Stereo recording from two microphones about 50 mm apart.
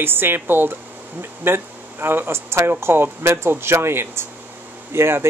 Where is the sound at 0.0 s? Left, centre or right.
Right.